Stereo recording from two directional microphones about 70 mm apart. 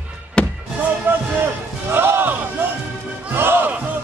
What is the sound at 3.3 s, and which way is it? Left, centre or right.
Music, right.